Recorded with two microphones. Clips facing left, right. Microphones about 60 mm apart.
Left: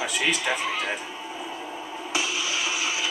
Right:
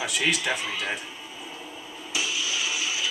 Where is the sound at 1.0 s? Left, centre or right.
Left.